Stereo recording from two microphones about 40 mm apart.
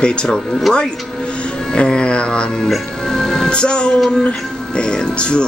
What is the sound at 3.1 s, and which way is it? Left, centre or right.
Music, centre.